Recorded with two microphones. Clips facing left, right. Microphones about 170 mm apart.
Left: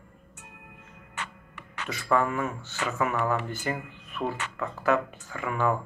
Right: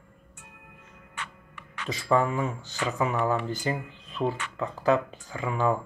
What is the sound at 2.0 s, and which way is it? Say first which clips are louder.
Speech: right 1 dB; 20° right (ahead or behind).